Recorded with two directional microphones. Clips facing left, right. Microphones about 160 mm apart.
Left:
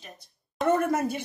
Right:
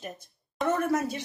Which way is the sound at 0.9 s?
55° left (ahead or behind).